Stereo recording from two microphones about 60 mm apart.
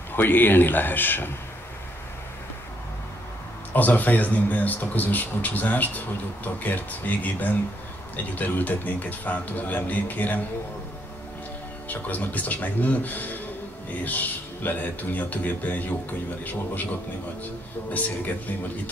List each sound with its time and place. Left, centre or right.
0.1 s a man's voice: left
3.7 s speech: left
11.9 s speech: left
17.9 s speech: left